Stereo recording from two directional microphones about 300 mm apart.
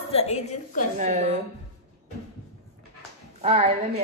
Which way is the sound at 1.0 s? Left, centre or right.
Right.